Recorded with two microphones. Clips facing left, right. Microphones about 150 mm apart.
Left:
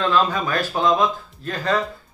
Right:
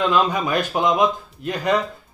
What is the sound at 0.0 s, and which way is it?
Speech, 15° right (ahead or behind).